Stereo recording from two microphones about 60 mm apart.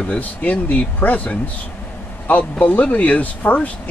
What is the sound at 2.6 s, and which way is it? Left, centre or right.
Speech, left.